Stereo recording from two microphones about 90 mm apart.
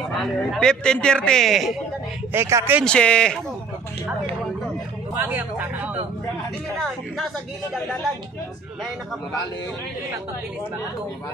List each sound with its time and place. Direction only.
0.4 s speech: 5° left (ahead or behind)
2.3 s speech: 30° right (ahead or behind)
2.8 s speech: 10° left (ahead or behind)
5.1 s speech: 20° right (ahead or behind)
6.8 s speech: centre (ahead or behind)